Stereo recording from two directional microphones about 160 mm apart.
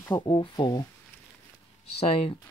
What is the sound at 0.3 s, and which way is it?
Speech, 30° left (ahead or behind).